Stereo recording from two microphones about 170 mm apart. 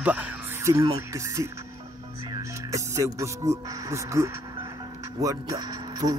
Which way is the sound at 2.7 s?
20° right (ahead or behind).